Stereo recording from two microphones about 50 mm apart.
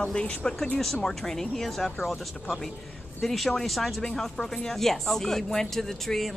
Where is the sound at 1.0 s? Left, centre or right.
Centre.